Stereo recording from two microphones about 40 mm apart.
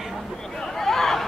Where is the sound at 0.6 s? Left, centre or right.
Centre.